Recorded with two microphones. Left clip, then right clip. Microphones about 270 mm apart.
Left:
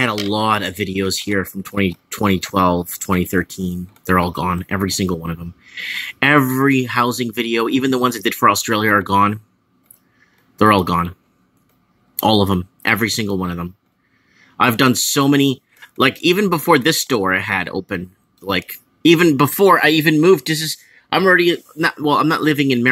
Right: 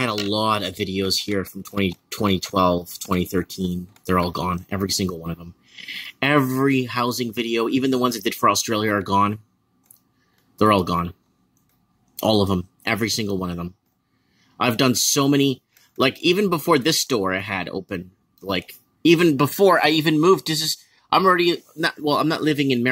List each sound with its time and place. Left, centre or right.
0.0 s speech: centre
10.6 s speech: centre
12.2 s speech: centre